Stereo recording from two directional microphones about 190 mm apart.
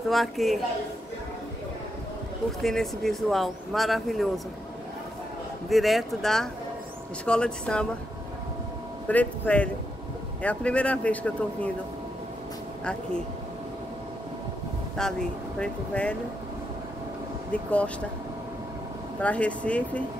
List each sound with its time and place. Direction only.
0.1 s speech: centre (ahead or behind)
2.6 s speech: centre (ahead or behind)
5.7 s speech: centre (ahead or behind)
9.0 s speech: 10° left (ahead or behind)
15.0 s speech: 5° left (ahead or behind)
17.5 s speech: 5° left (ahead or behind)
19.2 s speech: 5° left (ahead or behind)